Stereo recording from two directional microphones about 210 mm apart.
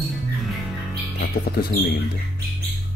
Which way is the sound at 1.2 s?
45° left (ahead or behind).